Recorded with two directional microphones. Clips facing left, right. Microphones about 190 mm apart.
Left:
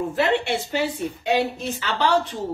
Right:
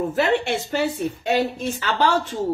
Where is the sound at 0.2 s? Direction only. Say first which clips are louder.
Even; 45° right (ahead or behind).